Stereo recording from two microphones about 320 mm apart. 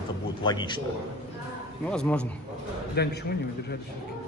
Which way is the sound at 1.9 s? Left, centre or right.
Centre.